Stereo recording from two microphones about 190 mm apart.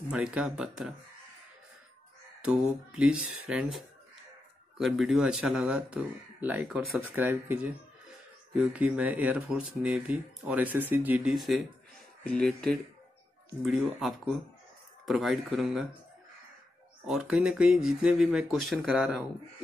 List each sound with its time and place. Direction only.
0.1 s speech: 5° right (ahead or behind)
2.4 s speech: 5° right (ahead or behind)
17.0 s speech: 5° right (ahead or behind)